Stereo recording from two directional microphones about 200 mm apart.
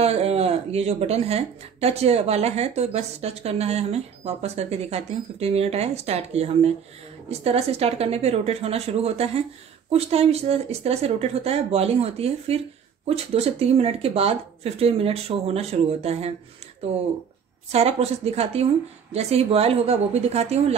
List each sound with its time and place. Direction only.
0.0 s speech: 30° right (ahead or behind)
17.6 s speech: 30° right (ahead or behind)